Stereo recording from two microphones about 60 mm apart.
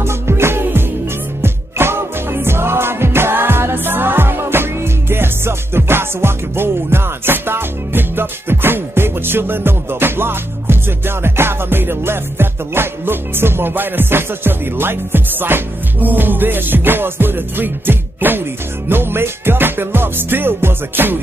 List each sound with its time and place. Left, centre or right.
0.0 s music: right